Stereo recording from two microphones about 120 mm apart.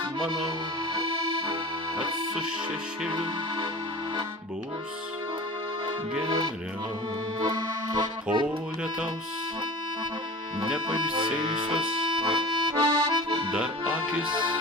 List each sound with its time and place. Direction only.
1.0 s accordion: 45° right (ahead or behind)
6.2 s speech: 40° right (ahead or behind)
7.4 s accordion: 35° right (ahead or behind)
11.0 s accordion: 45° right (ahead or behind)
13.5 s accordion: 10° right (ahead or behind)
14.3 s accordion: 40° right (ahead or behind)